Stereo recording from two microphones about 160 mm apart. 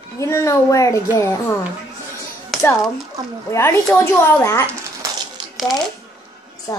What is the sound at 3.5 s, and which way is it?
A woman's voice, 15° left (ahead or behind).